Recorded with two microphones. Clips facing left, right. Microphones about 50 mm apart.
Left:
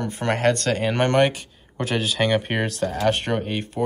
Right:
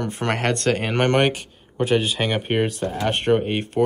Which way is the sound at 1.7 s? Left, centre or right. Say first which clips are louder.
Right 4 dB; centre.